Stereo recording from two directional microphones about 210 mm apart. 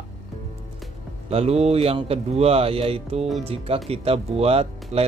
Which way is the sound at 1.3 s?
30° right (ahead or behind).